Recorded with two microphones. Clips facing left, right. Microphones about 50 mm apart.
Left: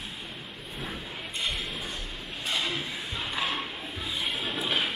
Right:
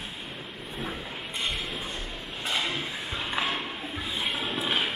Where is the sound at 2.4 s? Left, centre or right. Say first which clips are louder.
Right 1 dB; right.